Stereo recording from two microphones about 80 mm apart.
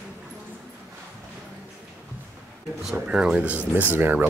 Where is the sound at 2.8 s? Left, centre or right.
Centre; by 4.3 s right.